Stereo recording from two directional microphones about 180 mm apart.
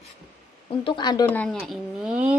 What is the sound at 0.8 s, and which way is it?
Speech, 25° left (ahead or behind).